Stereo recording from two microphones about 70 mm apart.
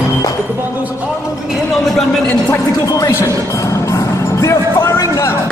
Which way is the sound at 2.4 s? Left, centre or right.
Left.